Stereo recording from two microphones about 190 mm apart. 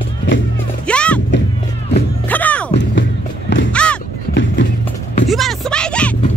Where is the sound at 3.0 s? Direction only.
75° left (ahead or behind).